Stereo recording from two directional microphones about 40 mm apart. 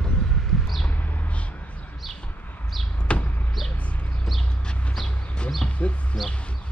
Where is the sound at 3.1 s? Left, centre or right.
Left.